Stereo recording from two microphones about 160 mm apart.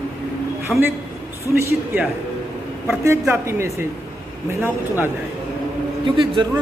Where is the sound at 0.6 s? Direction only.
15° right (ahead or behind).